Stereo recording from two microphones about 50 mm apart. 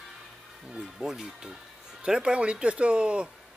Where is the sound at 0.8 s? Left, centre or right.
Centre.